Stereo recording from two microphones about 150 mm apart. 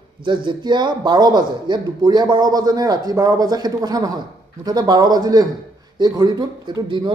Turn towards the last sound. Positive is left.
turn(degrees=-30)  # may be behind; listen again after turning